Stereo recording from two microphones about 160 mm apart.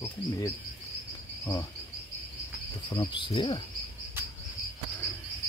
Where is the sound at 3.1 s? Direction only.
25° left (ahead or behind).